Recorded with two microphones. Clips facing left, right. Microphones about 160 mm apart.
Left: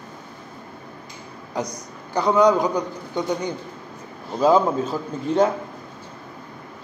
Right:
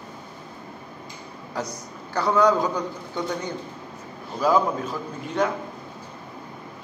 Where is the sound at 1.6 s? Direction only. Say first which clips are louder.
Left 3 dB; 15° left (ahead or behind).